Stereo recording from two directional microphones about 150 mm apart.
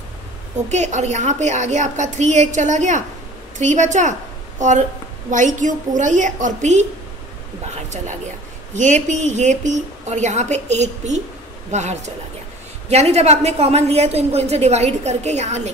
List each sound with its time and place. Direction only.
0.7 s a woman's voice: 50° right (ahead or behind)
8.7 s a woman's voice: 55° right (ahead or behind)